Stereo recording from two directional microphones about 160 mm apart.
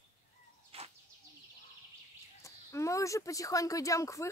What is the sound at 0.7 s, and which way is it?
Bird, 40° right (ahead or behind).